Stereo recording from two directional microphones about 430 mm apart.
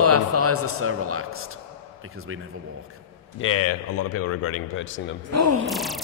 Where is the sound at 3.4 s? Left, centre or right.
Left.